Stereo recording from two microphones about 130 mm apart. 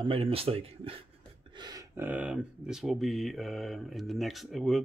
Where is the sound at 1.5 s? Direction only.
35° right (ahead or behind).